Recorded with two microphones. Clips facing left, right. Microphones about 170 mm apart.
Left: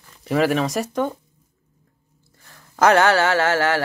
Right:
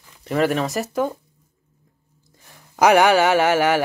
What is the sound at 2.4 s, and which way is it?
Speech, 15° right (ahead or behind).